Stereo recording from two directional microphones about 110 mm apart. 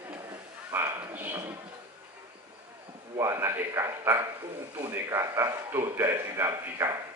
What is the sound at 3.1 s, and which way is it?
A man's voice, 30° right (ahead or behind).